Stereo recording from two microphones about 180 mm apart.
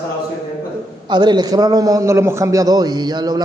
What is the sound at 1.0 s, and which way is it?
A man's voice, 25° right (ahead or behind).